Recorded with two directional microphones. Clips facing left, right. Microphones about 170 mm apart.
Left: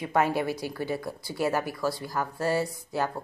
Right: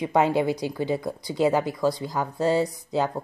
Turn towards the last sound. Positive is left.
turn(degrees=-20)  # may be behind; listen again after turning